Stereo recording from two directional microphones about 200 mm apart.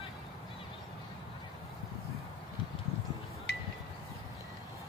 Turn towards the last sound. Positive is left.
turn(degrees=55)  # may be behind; listen again after turning